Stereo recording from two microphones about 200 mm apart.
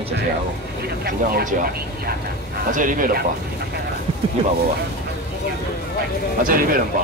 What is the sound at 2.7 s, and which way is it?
Speech, 40° right (ahead or behind).